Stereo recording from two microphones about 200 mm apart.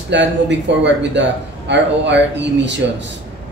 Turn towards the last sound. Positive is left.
turn(degrees=-60)  # may be behind; listen again after turning